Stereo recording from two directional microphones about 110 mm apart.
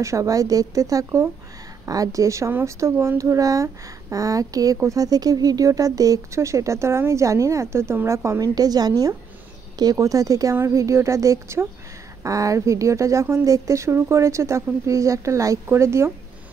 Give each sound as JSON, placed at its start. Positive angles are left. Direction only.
{"t": 0.0, "sound": "speech", "side_deg": -30}